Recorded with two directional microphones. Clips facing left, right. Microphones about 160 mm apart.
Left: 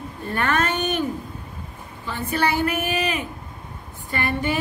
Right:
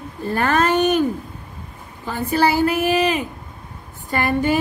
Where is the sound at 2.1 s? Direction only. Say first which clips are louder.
Right 5 dB; 35° right (ahead or behind).